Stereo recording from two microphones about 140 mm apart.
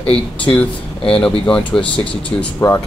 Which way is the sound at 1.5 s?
10° left (ahead or behind).